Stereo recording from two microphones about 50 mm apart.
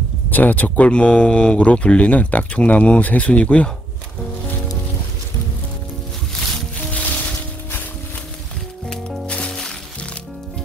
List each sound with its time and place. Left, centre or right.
0.3 s speech: left
0.8 s speech: left
6.9 s music: left
8.8 s music: centre